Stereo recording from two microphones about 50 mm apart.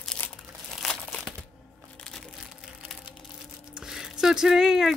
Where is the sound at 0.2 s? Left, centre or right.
Left.